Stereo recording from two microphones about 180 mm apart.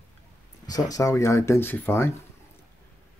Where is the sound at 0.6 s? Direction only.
20° left (ahead or behind).